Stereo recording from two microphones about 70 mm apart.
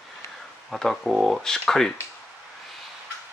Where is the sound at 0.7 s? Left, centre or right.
Centre.